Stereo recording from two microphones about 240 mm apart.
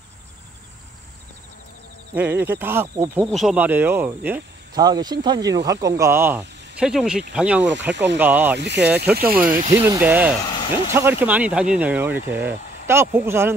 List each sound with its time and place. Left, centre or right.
2.1 s speech: centre
8.5 s speech: right
9.2 s speech: centre